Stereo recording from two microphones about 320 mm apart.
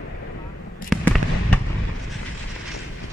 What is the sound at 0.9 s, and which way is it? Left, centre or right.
Fireworks, centre.